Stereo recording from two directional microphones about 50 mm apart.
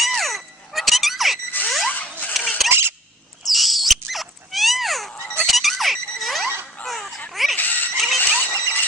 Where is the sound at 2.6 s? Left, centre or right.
Right.